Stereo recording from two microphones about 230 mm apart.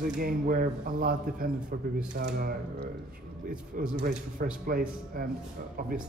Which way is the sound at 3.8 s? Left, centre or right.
Right.